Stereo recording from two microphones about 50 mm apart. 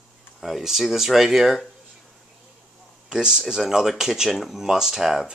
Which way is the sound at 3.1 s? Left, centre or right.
Centre.